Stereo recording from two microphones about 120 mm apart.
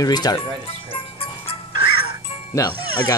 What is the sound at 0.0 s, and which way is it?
Speech, 35° left (ahead or behind).